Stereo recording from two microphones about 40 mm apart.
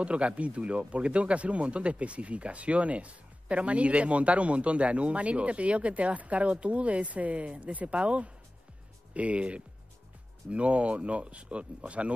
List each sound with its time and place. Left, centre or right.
0.0 s speech: right